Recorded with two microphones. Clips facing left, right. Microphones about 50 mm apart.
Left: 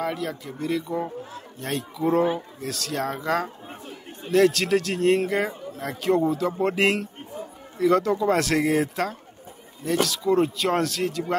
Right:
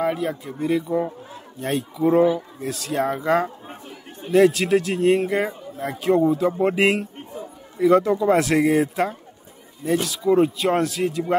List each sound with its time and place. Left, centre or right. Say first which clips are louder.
0.0 s speech: right 5 dB; centre